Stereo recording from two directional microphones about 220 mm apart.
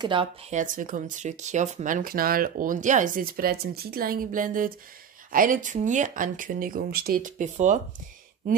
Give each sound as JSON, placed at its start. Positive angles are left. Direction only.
{"t": 0.0, "sound": "speech", "side_deg": -25}